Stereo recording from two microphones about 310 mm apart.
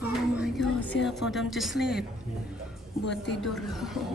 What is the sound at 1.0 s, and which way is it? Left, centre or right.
Speech, centre.